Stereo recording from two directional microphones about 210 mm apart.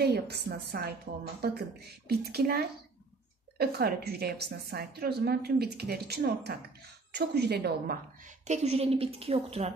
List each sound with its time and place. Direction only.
0.0 s a woman's voice: 50° right (ahead or behind)
8.5 s a woman's voice: 30° right (ahead or behind)